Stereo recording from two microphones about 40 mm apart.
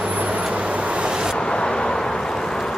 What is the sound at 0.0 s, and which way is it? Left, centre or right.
Vehicle, right.